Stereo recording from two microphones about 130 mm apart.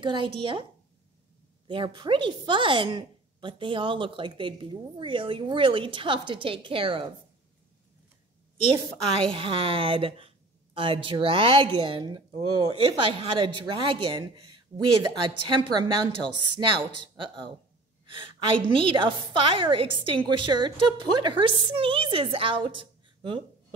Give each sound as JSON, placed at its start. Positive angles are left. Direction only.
{"t": 0.0, "sound": "a woman's voice", "side_deg": -40}
{"t": 1.7, "sound": "a woman's voice", "side_deg": -40}
{"t": 9.3, "sound": "a woman's voice", "side_deg": -45}